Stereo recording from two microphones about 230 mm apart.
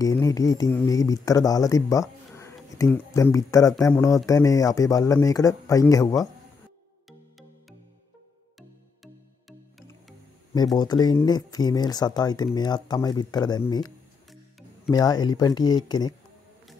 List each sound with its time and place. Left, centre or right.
0.0 s speech: centre
8.5 s music: centre
10.5 s speech: centre